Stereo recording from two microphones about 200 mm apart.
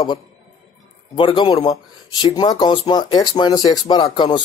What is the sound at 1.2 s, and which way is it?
A man's voice, 25° left (ahead or behind).